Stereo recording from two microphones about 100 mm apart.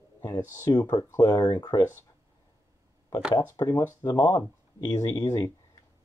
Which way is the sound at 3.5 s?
35° left (ahead or behind).